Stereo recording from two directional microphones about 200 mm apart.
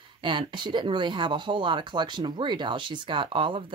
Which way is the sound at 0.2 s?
25° right (ahead or behind).